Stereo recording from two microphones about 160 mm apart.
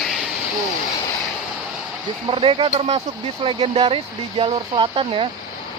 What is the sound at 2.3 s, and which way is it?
Speech, 35° right (ahead or behind).